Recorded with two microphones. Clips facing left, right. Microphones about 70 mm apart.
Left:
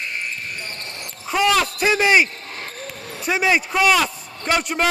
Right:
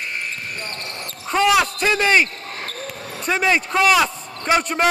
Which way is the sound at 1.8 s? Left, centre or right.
Centre.